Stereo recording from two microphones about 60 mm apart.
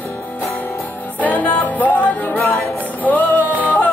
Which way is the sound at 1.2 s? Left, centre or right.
Left.